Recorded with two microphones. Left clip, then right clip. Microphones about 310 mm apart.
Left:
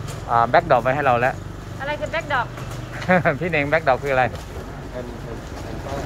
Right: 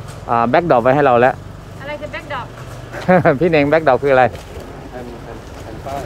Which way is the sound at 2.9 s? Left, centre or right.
Right.